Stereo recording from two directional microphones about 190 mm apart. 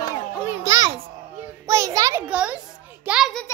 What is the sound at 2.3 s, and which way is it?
A child's voice, 5° right (ahead or behind).